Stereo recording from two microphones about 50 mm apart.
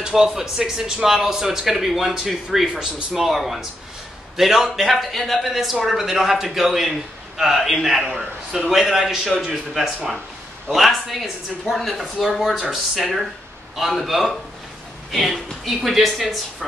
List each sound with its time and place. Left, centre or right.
0.0 s a man's voice: centre